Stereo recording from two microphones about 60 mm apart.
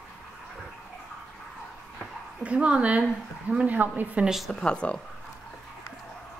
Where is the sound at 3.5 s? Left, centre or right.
Right.